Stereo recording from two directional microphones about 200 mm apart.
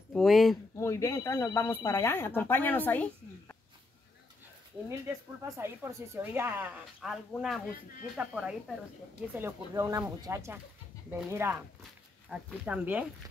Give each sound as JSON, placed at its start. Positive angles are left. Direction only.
{"t": 0.1, "sound": "speech", "side_deg": 0}
{"t": 0.7, "sound": "speech", "side_deg": 15}
{"t": 4.8, "sound": "a woman's voice", "side_deg": -15}
{"t": 9.4, "sound": "a woman's voice", "side_deg": -15}